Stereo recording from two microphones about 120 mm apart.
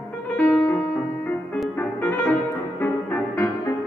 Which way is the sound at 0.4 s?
15° left (ahead or behind).